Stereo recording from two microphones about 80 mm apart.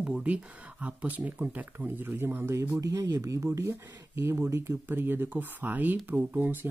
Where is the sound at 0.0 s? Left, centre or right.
Centre.